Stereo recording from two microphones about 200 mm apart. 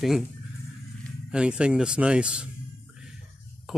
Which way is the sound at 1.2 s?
5° right (ahead or behind).